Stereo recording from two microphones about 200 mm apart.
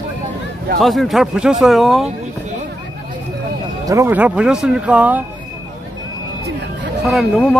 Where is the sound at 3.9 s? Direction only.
10° right (ahead or behind).